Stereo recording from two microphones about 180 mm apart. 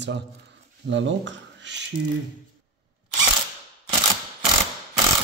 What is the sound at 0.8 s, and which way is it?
Speech, 90° right.